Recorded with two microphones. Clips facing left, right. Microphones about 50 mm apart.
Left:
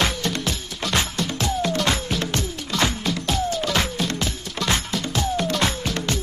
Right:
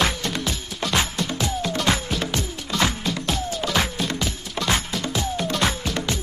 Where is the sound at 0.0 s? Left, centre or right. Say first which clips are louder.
Even; centre.